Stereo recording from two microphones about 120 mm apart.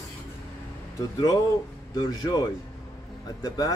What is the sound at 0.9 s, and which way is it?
Speech, 30° left (ahead or behind).